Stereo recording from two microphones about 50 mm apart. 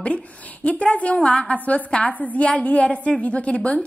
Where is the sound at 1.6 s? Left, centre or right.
Left.